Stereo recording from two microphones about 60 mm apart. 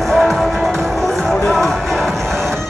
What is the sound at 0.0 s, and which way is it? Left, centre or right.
Music, centre.